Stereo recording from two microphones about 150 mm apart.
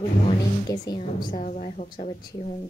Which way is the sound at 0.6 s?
25° left (ahead or behind).